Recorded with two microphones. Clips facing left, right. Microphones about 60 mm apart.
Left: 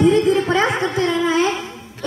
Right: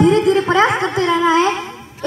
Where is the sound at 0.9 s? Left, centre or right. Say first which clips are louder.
Right 4 dB; right.